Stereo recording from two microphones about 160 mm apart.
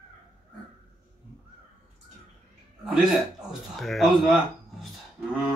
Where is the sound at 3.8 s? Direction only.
Centre (ahead or behind).